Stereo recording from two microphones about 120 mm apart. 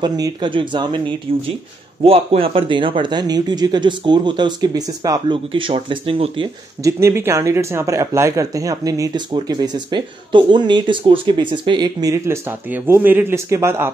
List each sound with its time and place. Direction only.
0.0 s speech: 35° right (ahead or behind)
2.0 s speech: 50° right (ahead or behind); by 5.2 s 30° right (ahead or behind)
5.3 s speech: 45° right (ahead or behind)
6.8 s speech: 25° right (ahead or behind)